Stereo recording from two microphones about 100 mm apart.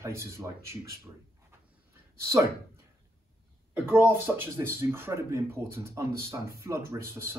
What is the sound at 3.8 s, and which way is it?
Speech, 20° right (ahead or behind).